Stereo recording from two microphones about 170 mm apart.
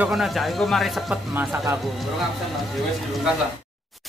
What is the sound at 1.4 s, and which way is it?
Speech, 15° right (ahead or behind).